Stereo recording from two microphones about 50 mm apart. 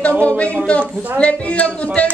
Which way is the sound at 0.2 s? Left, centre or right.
Left.